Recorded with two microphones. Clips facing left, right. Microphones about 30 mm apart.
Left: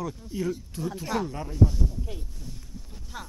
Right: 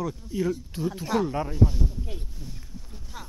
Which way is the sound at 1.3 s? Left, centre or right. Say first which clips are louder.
Right 1 dB; right.